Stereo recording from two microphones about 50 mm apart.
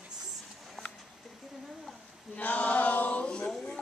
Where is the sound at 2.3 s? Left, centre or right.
Left.